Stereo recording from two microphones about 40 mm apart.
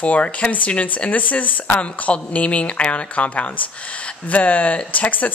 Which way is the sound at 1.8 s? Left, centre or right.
Left.